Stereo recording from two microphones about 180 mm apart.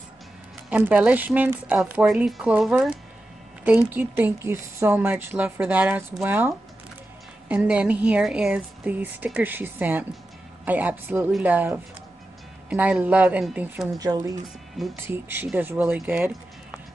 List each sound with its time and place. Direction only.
0.7 s speech: 5° right (ahead or behind)
13.9 s speech: 20° right (ahead or behind)